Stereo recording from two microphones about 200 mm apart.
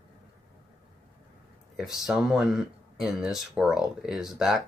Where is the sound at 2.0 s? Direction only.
Centre (ahead or behind).